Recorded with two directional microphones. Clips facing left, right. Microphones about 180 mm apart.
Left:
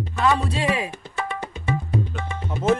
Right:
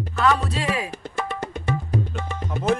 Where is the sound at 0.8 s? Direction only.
40° right (ahead or behind).